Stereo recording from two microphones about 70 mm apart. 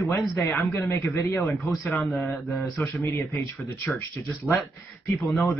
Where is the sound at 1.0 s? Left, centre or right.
Left.